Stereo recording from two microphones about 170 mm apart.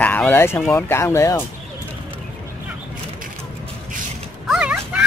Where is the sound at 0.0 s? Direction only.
10° left (ahead or behind).